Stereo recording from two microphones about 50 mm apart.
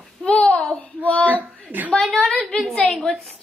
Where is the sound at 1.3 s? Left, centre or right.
Right.